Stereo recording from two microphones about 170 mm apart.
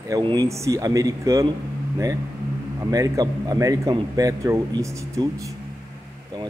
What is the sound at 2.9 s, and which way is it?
A man's voice, 20° right (ahead or behind).